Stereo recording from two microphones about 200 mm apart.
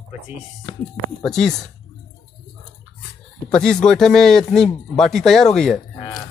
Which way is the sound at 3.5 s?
5° left (ahead or behind).